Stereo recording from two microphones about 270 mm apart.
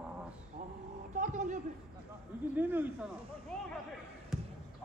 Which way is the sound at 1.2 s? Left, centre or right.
Right.